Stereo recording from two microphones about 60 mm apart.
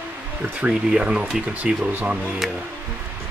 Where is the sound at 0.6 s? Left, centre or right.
Centre.